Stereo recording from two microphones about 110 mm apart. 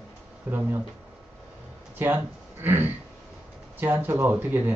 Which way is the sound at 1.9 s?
20° right (ahead or behind).